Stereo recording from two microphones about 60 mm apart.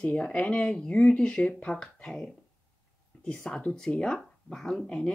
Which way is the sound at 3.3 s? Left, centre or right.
Centre.